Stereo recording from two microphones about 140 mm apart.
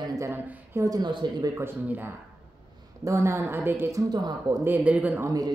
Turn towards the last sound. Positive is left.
turn(degrees=-10)  # may be behind; listen again after turning